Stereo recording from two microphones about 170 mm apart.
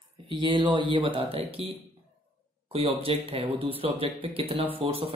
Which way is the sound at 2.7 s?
35° right (ahead or behind).